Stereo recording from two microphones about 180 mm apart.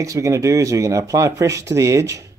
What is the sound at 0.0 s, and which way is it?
Speech, 15° right (ahead or behind).